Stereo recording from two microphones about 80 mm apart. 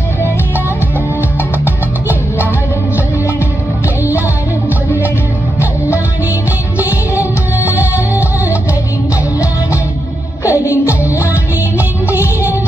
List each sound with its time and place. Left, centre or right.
7.9 s music: right
10.4 s music: left
12.1 s music: right